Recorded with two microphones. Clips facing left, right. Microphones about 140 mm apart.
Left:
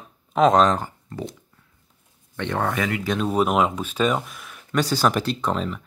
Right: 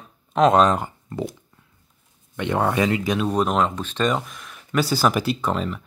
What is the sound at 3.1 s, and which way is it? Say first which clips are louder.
Speech: even; centre (ahead or behind).